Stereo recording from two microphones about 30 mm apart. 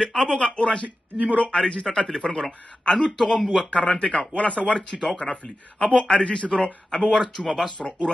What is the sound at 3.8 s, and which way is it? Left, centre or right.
Speech, left.